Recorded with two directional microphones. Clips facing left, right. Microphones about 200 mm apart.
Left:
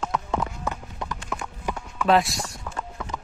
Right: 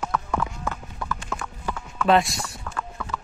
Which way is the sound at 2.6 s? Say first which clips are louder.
Right 1 dB; 20° left (ahead or behind).